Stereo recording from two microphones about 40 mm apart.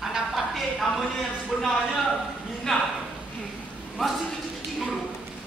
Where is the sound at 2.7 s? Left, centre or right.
Centre.